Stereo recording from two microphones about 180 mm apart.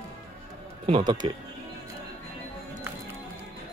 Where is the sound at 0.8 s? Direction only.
25° right (ahead or behind).